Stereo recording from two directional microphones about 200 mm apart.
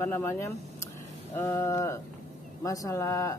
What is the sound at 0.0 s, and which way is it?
Speech, 10° left (ahead or behind).